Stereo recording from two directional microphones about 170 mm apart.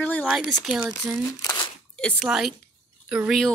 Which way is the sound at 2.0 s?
Centre (ahead or behind).